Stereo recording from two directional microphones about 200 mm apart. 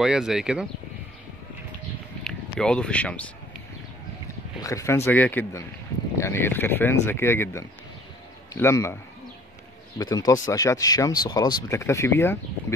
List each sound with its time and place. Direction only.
0.0 s speech: 5° right (ahead or behind)
2.6 s speech: 5° left (ahead or behind)
4.6 s speech: 15° left (ahead or behind)
9.9 s speech: 20° left (ahead or behind)